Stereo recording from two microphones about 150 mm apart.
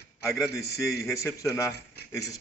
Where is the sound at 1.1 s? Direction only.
20° left (ahead or behind).